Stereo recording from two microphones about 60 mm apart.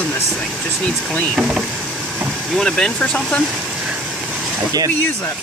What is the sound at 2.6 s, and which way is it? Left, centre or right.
Speech, centre.